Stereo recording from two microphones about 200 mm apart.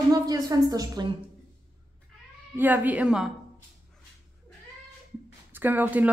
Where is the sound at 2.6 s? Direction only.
10° right (ahead or behind).